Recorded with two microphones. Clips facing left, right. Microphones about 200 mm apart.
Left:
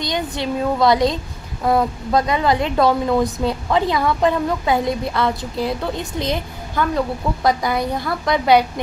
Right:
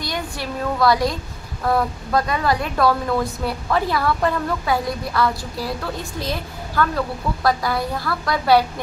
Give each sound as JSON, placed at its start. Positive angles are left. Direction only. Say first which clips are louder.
{"t": 0.0, "sound": "a woman's voice", "louder": "left 5 dB", "side_deg": 20}